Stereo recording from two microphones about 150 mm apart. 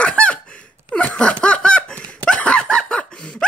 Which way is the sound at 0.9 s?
10° left (ahead or behind).